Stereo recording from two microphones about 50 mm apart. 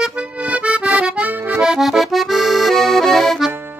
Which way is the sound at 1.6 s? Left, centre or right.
Centre.